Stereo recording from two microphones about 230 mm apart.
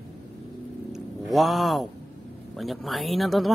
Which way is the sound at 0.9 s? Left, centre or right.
Centre.